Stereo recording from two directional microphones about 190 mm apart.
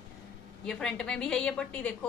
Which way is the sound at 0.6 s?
5° left (ahead or behind).